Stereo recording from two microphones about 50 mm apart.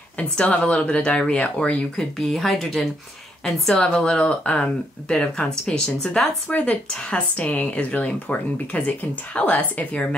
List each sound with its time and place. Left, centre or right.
0.2 s speech: left
2.0 s speech: centre
3.7 s speech: centre
4.2 s speech: left